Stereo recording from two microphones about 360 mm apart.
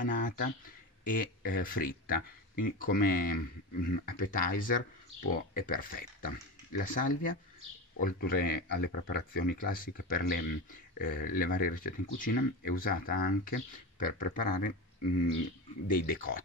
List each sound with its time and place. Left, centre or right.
0.0 s speech: left
15.9 s speech: left